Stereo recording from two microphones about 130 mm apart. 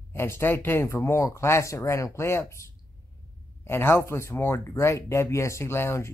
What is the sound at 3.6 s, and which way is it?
Speech, 20° left (ahead or behind).